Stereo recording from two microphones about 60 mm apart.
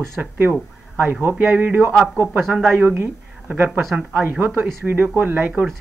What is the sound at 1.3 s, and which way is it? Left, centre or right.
Speech, right.